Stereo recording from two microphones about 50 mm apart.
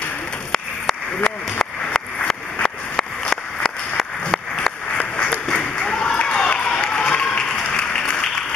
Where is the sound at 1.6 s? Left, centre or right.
Centre.